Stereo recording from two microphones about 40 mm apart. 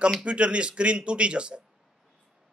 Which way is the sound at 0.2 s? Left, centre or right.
Right.